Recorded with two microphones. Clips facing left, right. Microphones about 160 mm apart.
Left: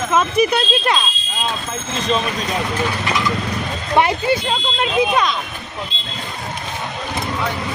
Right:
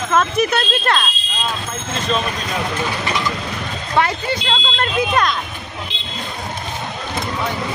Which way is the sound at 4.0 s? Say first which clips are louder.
Left 3 dB; 15° left (ahead or behind).